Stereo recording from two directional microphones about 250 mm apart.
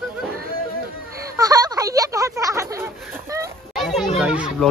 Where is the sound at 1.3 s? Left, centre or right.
Centre.